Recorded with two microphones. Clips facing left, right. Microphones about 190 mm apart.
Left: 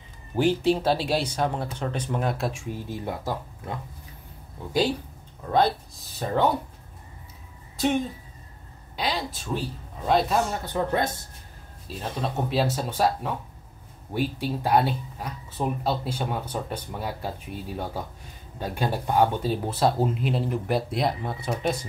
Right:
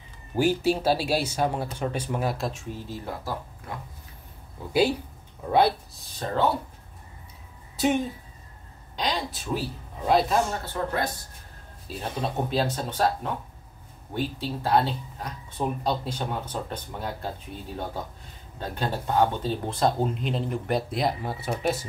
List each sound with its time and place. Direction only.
0.4 s speech: 10° right (ahead or behind)
2.5 s speech: 15° left (ahead or behind)
5.4 s speech: 10° right (ahead or behind)
6.3 s speech: 15° left (ahead or behind)
8.9 s speech: 5° left (ahead or behind)
10.6 s speech: 20° left (ahead or behind)
11.9 s speech: centre (ahead or behind)